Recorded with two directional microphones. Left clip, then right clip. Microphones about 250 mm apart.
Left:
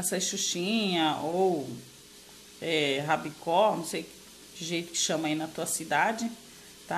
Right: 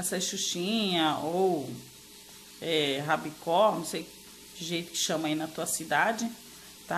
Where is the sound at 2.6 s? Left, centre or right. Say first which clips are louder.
Left 1 dB; centre.